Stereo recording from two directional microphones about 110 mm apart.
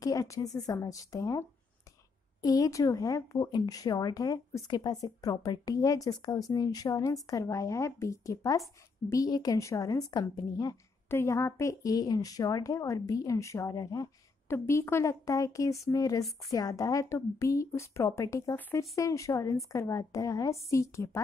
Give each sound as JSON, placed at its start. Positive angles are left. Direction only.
{"t": 0.0, "sound": "speech", "side_deg": 30}
{"t": 2.4, "sound": "a woman's voice", "side_deg": 35}